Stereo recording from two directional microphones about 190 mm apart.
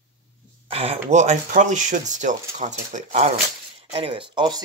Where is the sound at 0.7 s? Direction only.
30° right (ahead or behind).